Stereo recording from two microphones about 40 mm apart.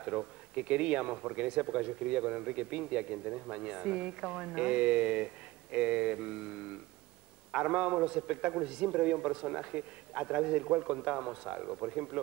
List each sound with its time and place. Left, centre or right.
0.0 s speech: right